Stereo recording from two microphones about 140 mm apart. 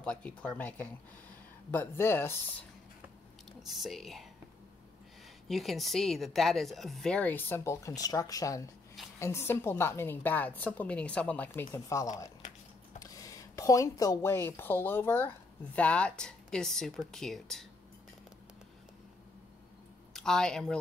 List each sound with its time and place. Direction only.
0.0 s a woman's voice: 10° left (ahead or behind)
3.6 s speech: centre (ahead or behind)
5.5 s a woman's voice: centre (ahead or behind); by 12.1 s 20° left (ahead or behind)
12.4 s a sound: 55° left (ahead or behind)
13.0 s speech: 25° left (ahead or behind); by 17.6 s 5° left (ahead or behind)
20.1 s speech: 5° left (ahead or behind)